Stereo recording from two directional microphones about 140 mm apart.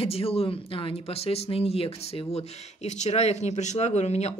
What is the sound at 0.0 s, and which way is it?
Speech, 45° left (ahead or behind).